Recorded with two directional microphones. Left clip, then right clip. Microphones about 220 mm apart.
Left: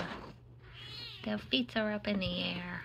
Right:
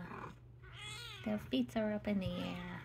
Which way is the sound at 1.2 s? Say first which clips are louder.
Left 5 dB; 5° right (ahead or behind).